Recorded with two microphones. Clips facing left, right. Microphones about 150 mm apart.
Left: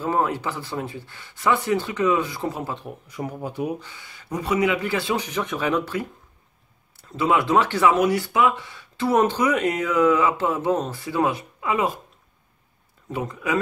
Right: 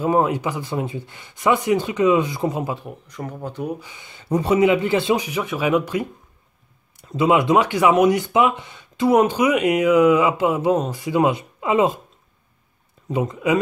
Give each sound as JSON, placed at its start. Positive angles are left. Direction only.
{"t": 0.0, "sound": "speech", "side_deg": -15}
{"t": 2.7, "sound": "speech", "side_deg": 0}
{"t": 3.8, "sound": "speech", "side_deg": -20}
{"t": 5.2, "sound": "speech", "side_deg": -5}
{"t": 13.1, "sound": "speech", "side_deg": -20}